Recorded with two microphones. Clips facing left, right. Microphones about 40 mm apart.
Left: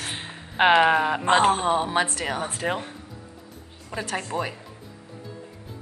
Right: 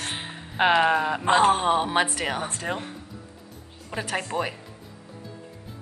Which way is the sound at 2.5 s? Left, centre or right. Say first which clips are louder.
Left 3 dB; centre.